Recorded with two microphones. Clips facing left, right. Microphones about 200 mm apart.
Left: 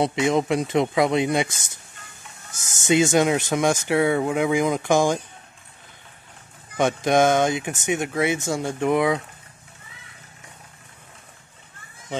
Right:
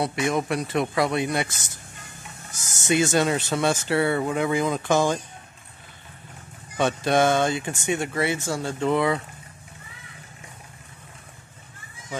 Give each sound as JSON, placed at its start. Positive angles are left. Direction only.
{"t": 0.0, "sound": "speech", "side_deg": 20}
{"t": 2.9, "sound": "speech", "side_deg": 20}
{"t": 6.8, "sound": "speech", "side_deg": 15}